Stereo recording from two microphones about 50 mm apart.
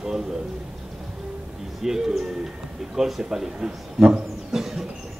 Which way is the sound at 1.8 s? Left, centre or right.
Centre.